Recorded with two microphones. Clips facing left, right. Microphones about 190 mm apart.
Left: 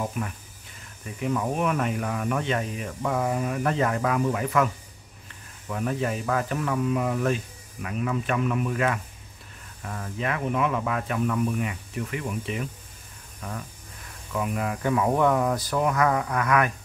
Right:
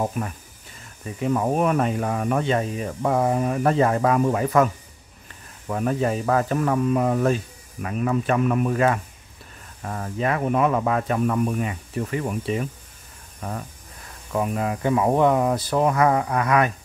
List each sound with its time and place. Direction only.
0.2 s speech: 40° right (ahead or behind)
5.7 s speech: 45° right (ahead or behind); by 16.7 s 25° right (ahead or behind)